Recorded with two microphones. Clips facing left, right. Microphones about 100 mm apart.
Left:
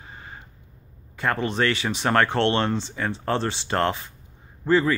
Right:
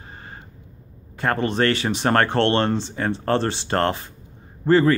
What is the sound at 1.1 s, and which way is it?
Speech, 45° right (ahead or behind).